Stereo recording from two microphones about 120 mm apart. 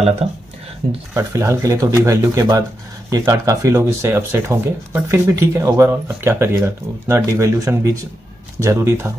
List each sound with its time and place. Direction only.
0.2 s speech: 60° right (ahead or behind)
1.1 s speech: 25° right (ahead or behind)